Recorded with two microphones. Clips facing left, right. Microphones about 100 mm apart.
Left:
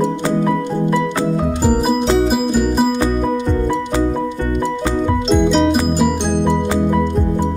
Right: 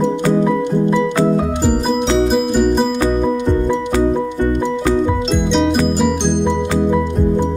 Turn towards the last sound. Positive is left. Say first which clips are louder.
# left 2 dB
turn(degrees=5)  # may be behind; listen again after turning